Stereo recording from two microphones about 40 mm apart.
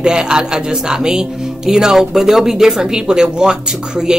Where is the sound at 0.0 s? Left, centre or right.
Centre.